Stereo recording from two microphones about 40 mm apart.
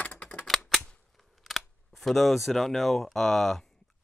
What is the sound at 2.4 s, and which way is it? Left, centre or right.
Speech, centre.